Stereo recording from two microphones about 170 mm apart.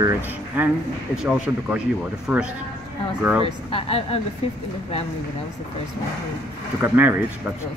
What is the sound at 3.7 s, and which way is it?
Speech, 35° left (ahead or behind).